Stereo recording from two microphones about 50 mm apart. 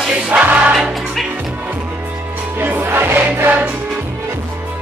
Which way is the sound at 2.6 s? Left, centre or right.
Right.